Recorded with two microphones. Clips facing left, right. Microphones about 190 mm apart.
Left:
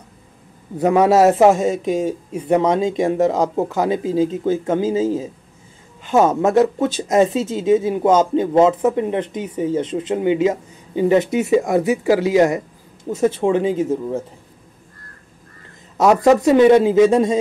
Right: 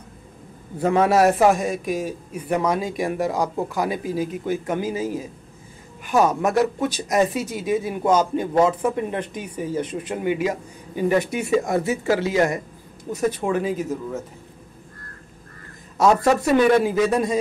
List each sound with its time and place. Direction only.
0.7 s speech: 20° left (ahead or behind)
16.0 s speech: 20° left (ahead or behind)